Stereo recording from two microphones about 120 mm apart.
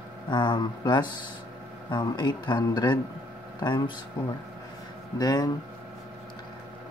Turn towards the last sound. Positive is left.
turn(degrees=30)  # may be behind; listen again after turning